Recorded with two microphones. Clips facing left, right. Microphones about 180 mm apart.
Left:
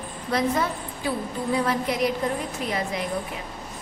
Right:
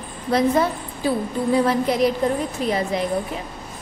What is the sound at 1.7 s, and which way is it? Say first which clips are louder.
Child singing: right 5 dB; 35° right (ahead or behind).